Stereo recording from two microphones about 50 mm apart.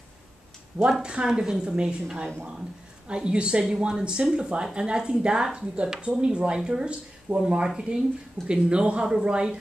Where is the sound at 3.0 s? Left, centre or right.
Centre.